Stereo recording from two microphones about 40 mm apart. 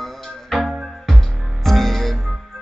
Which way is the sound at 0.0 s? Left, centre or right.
Centre.